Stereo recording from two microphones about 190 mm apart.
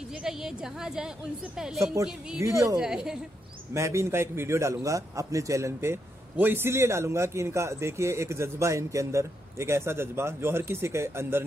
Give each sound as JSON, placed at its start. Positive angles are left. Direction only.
{"t": 0.1, "sound": "a woman's voice", "side_deg": -5}
{"t": 2.4, "sound": "a man's voice", "side_deg": -15}
{"t": 2.8, "sound": "a woman's voice", "side_deg": -5}
{"t": 3.7, "sound": "a man's voice", "side_deg": -15}